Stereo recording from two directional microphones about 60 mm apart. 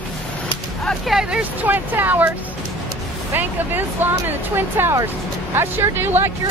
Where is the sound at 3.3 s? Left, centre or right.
Right.